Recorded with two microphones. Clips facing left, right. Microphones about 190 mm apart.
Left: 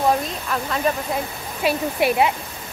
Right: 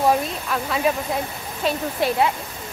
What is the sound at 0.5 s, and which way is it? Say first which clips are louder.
Speech: even; 5° right (ahead or behind).